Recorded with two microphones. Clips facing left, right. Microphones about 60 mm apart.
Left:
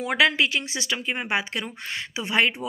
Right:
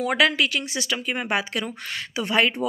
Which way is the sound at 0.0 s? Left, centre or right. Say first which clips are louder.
Right 1 dB; left.